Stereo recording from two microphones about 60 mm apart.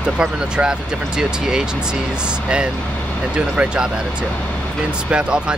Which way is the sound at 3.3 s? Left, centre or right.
Centre.